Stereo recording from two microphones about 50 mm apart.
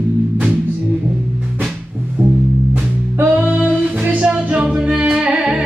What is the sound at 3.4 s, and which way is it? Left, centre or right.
Music, right.